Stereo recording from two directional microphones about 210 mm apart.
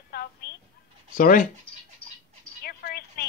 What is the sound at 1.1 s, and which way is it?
Child singing, 40° left (ahead or behind).